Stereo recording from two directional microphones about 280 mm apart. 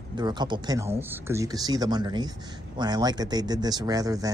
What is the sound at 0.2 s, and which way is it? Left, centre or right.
Speech, centre.